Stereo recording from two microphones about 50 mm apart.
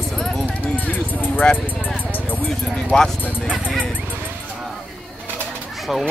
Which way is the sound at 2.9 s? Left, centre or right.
Centre.